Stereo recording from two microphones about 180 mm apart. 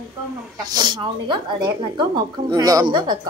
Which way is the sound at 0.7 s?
25° right (ahead or behind).